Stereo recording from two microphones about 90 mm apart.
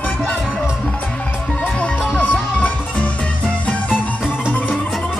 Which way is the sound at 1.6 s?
20° left (ahead or behind).